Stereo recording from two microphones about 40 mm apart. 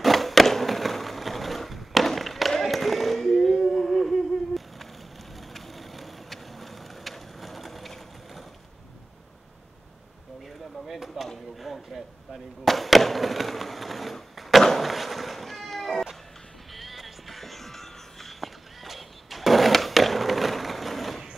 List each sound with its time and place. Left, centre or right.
0.0 s skateboard: centre
2.6 s a sound: centre
3.6 s humming: centre
5.5 s vehicle: centre
10.9 s a sound: centre
16.7 s music: centre
18.9 s skateboard: centre